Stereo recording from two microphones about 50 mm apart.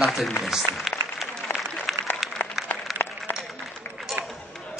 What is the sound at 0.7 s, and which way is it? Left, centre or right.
Speech, right.